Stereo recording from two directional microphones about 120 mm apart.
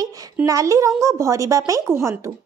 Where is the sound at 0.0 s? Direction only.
30° right (ahead or behind).